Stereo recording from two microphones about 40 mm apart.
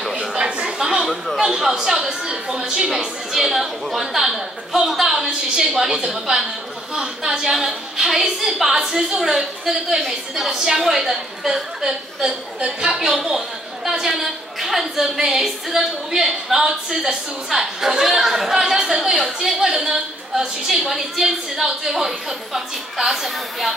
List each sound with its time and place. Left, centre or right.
0.4 s a sound: right
0.7 s chatter: centre
1.0 s a woman's voice: centre
1.4 s a woman's voice: centre
5.8 s a woman's voice: centre
7.5 s a woman's voice: centre
12.3 s a woman's voice: right
20.8 s a woman's voice: centre